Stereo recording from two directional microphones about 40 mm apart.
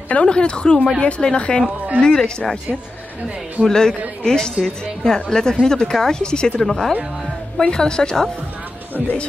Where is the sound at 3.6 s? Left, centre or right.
Centre.